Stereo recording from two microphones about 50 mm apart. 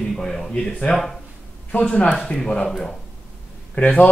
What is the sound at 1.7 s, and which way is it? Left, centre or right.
Speech, left.